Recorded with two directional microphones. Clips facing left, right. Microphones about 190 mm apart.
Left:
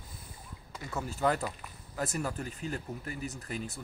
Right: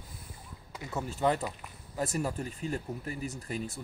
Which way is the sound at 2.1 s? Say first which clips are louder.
Right 2 dB; 30° right (ahead or behind).